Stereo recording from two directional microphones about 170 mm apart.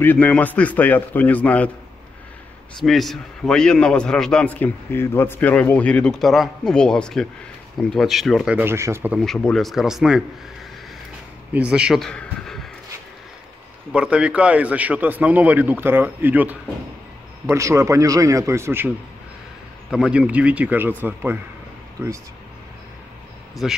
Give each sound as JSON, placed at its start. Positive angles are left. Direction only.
{"t": 0.0, "sound": "a man's voice", "side_deg": 10}
{"t": 2.8, "sound": "a man's voice", "side_deg": 0}
{"t": 9.1, "sound": "a man's voice", "side_deg": 5}
{"t": 11.5, "sound": "speech", "side_deg": -5}
{"t": 13.9, "sound": "a man's voice", "side_deg": -5}
{"t": 19.9, "sound": "a man's voice", "side_deg": -5}
{"t": 23.6, "sound": "a man's voice", "side_deg": -5}